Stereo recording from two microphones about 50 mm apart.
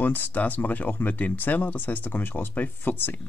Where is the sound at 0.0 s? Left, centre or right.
Left.